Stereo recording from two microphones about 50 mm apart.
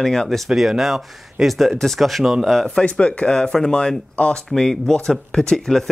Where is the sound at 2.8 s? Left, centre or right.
Left.